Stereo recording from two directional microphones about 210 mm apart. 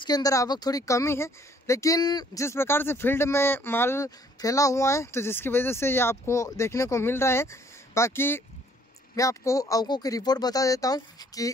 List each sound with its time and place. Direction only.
0.0 s speech: 15° left (ahead or behind)